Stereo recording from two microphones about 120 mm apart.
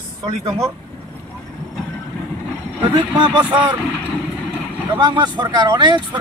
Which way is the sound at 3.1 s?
40° right (ahead or behind).